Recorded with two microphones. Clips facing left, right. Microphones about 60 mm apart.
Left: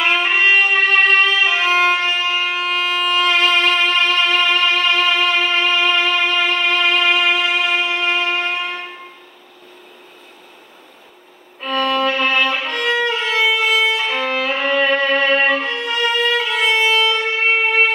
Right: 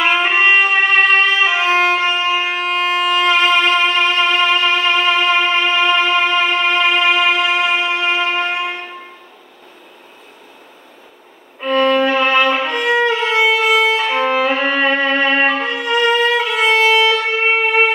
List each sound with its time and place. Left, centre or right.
0.0 s trumpet: centre
1.9 s music: centre
2.5 s music: right
3.0 s violin: centre
3.3 s music: centre
11.6 s violin: centre